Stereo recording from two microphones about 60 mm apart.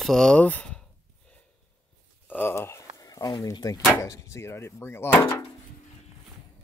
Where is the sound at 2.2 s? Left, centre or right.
Left.